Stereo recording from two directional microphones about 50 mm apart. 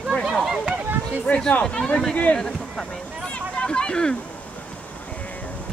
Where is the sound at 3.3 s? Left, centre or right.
Centre.